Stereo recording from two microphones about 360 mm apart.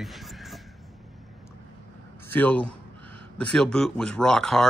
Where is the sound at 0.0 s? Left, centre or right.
Centre.